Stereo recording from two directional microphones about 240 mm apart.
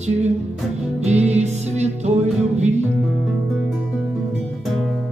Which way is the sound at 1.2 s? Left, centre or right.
Right.